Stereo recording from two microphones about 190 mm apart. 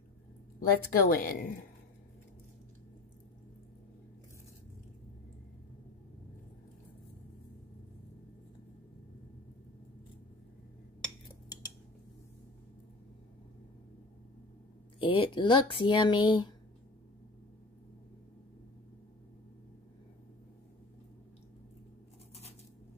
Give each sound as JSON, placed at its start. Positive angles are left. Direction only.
{"t": 0.6, "sound": "a woman's voice", "side_deg": 50}
{"t": 15.0, "sound": "speech", "side_deg": 25}